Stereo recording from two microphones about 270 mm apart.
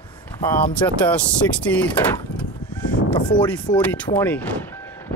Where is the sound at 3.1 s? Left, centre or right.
Centre.